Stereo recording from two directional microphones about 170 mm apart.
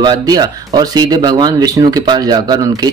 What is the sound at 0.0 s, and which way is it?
Speech, 25° right (ahead or behind).